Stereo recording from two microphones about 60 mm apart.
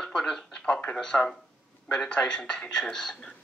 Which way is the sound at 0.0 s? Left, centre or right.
Centre.